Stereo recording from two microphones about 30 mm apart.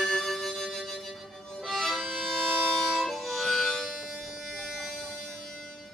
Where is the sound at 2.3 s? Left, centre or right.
Centre.